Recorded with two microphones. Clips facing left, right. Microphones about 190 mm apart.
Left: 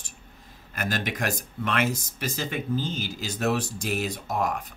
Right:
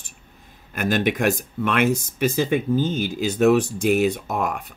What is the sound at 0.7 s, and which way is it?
Speech, 55° right (ahead or behind).